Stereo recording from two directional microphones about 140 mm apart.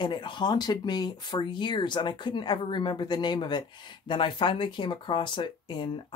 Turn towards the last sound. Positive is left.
turn(degrees=35)  # may be behind; listen again after turning